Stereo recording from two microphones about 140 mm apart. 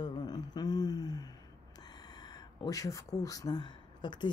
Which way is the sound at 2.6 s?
25° left (ahead or behind).